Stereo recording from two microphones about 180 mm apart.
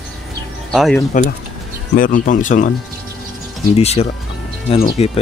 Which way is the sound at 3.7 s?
35° left (ahead or behind).